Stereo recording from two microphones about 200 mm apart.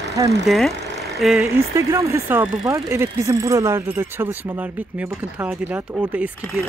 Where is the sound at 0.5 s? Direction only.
Centre (ahead or behind).